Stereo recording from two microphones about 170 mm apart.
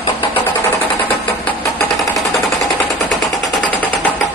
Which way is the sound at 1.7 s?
Centre (ahead or behind).